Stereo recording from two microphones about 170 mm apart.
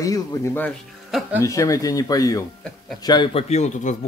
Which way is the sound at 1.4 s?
20° left (ahead or behind).